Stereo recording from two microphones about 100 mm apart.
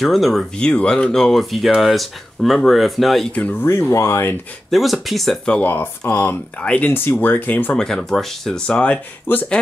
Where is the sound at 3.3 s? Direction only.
15° left (ahead or behind).